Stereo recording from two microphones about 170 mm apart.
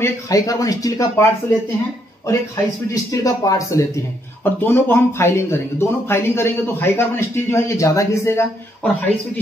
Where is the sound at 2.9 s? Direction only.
20° left (ahead or behind).